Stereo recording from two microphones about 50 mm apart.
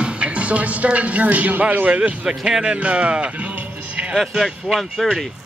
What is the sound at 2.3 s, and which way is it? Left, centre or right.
Speech, centre.